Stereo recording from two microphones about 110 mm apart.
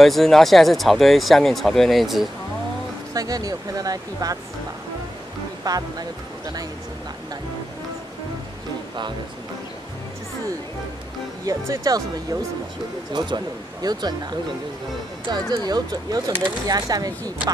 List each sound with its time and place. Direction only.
0.0 s speech: centre (ahead or behind)
3.2 s speech: 35° right (ahead or behind)
5.6 s speech: 35° right (ahead or behind)
11.4 s speech: 30° right (ahead or behind)
13.1 s speech: 45° right (ahead or behind)